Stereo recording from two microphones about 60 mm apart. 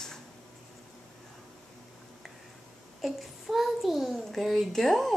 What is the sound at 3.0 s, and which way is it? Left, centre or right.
A child's voice, centre.